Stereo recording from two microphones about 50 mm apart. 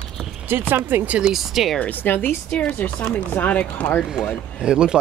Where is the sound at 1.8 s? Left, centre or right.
Left.